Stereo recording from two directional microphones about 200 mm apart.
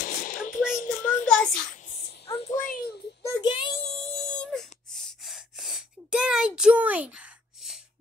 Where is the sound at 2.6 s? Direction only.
50° left (ahead or behind).